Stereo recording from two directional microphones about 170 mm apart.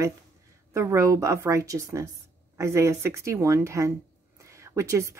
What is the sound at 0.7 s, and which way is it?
Speech, 15° right (ahead or behind).